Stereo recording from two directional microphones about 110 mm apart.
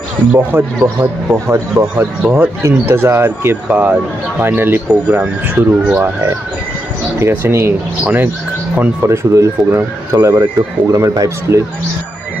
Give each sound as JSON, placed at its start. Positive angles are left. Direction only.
{"t": 0.3, "sound": "speech", "side_deg": -15}
{"t": 7.2, "sound": "speech", "side_deg": -25}
{"t": 8.7, "sound": "speech", "side_deg": -25}